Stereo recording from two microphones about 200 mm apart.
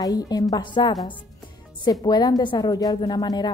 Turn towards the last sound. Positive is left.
turn(degrees=20)  # may be behind; listen again after turning